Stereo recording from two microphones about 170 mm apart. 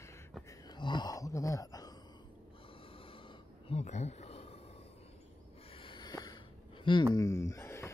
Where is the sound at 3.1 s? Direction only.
30° left (ahead or behind).